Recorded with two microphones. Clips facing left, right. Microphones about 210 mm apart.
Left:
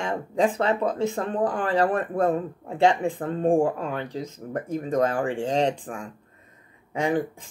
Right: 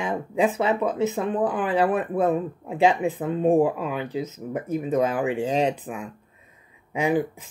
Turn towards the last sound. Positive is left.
turn(degrees=-5)  # may be behind; listen again after turning